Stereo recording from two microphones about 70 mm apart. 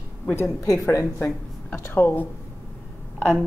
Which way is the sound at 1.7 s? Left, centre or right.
Left.